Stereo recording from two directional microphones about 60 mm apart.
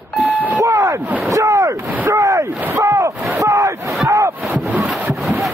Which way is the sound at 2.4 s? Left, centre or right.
Right.